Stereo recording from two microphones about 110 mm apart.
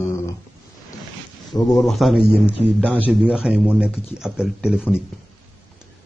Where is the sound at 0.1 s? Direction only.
25° left (ahead or behind).